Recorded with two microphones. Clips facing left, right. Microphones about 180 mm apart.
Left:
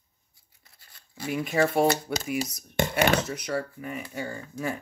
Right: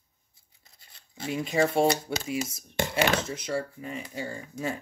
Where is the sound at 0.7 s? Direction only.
25° right (ahead or behind).